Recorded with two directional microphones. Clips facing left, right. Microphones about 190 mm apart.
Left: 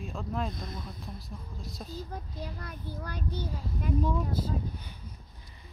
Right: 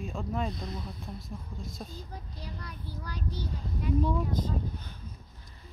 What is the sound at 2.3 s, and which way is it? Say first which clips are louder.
A child's voice: left 3 dB; 50° left (ahead or behind).